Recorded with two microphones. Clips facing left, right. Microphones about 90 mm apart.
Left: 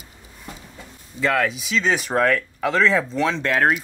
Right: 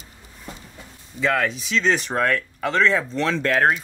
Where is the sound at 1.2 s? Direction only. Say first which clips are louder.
Left 1 dB; centre (ahead or behind).